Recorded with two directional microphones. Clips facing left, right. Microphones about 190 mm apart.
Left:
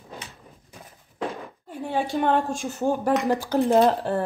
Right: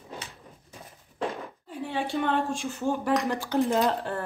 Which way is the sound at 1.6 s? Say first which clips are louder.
Left 4 dB; 45° left (ahead or behind).